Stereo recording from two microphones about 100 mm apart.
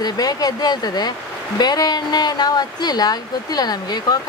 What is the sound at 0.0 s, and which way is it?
Speech, 40° left (ahead or behind).